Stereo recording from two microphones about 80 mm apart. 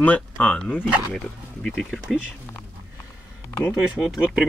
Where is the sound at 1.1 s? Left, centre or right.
Centre.